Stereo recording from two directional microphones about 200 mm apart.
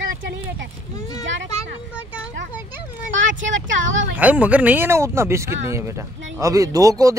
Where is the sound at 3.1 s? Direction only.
70° right (ahead or behind).